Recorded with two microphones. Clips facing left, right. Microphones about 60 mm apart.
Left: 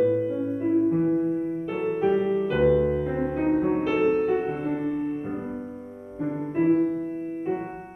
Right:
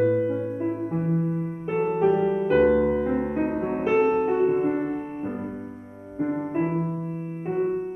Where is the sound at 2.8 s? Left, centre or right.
Centre.